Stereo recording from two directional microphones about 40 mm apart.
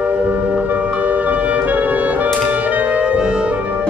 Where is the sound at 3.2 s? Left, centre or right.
Right.